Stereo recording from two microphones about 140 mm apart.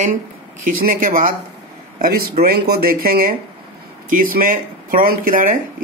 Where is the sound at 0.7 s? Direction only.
80° right.